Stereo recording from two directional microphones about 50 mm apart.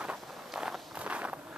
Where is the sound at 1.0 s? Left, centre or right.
Right.